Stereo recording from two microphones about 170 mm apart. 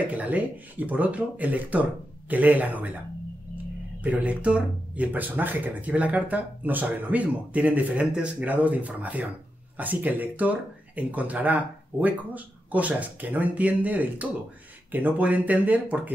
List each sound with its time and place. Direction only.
0.1 s speech: 10° right (ahead or behind)
4.0 s speech: 10° right (ahead or behind)